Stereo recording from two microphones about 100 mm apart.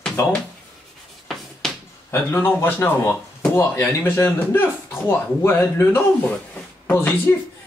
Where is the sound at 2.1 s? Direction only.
25° left (ahead or behind).